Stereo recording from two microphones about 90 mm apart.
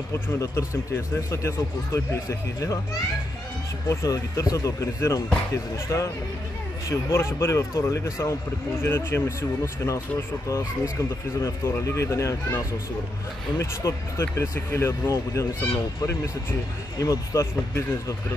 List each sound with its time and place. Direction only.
0.1 s speech: 30° left (ahead or behind)
3.9 s speech: 35° left (ahead or behind)
17.0 s speech: 40° left (ahead or behind)